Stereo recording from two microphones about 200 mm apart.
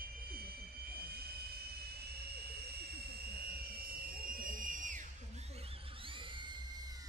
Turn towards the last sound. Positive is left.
turn(degrees=-25)  # may be behind; listen again after turning